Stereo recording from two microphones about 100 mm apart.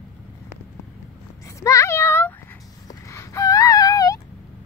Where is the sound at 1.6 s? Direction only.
30° left (ahead or behind).